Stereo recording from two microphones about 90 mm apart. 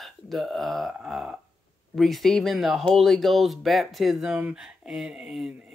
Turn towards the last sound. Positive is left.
turn(degrees=-5)  # may be behind; listen again after turning